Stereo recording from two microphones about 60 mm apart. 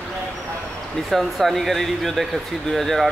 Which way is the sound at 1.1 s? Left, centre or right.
Centre.